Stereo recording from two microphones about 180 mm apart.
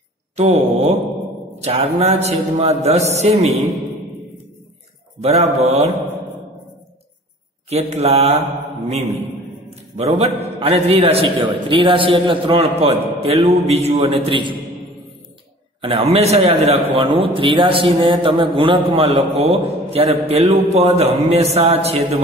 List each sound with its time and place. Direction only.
0.4 s a man's voice: 35° right (ahead or behind)
5.2 s a man's voice: 35° right (ahead or behind)
7.7 s a man's voice: 35° right (ahead or behind)
15.8 s a man's voice: 35° right (ahead or behind)